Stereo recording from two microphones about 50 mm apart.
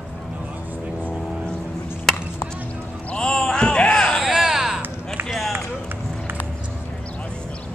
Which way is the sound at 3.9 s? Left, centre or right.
Centre.